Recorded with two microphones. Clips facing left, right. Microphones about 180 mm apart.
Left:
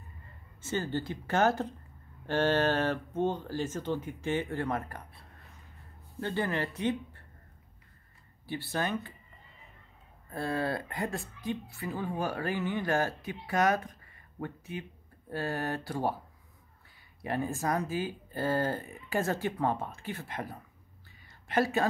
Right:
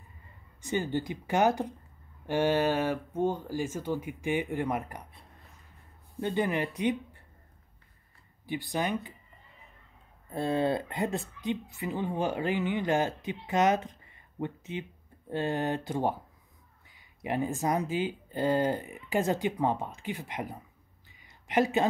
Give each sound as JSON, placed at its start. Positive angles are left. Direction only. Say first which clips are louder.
{"t": 0.6, "sound": "speech", "louder": "right 2 dB", "side_deg": -15}
{"t": 6.2, "sound": "speech", "louder": "right 3 dB", "side_deg": -15}
{"t": 8.5, "sound": "speech", "louder": "right 2 dB", "side_deg": -15}
{"t": 10.3, "sound": "a woman's voice", "louder": "right 4 dB", "side_deg": -20}
{"t": 17.2, "sound": "speech", "louder": "right 2 dB", "side_deg": -20}
{"t": 21.2, "sound": "a sound", "louder": "right 2 dB", "side_deg": -15}